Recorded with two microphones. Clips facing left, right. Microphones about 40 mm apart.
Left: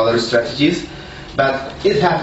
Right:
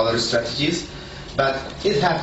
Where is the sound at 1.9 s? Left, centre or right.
Left.